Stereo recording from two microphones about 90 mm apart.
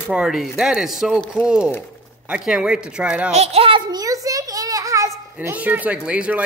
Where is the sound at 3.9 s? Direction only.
40° right (ahead or behind).